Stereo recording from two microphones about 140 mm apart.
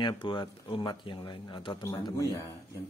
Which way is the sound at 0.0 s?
35° left (ahead or behind).